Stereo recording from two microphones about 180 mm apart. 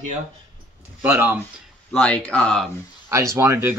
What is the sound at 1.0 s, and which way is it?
Speech, 10° right (ahead or behind).